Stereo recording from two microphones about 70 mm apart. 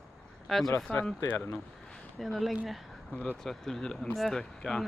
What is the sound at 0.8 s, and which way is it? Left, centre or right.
Speech, centre.